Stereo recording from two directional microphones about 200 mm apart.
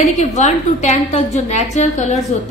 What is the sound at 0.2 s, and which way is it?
A woman's voice, 35° left (ahead or behind).